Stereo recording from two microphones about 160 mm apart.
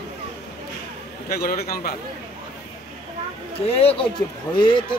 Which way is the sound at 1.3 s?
75° left (ahead or behind).